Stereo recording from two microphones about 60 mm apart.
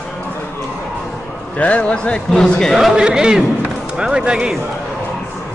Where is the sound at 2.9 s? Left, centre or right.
Centre.